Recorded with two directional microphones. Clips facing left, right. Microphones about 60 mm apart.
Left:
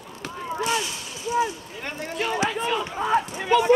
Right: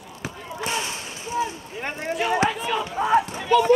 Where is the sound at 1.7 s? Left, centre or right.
Right.